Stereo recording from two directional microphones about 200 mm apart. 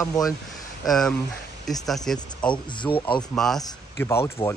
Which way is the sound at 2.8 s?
25° left (ahead or behind).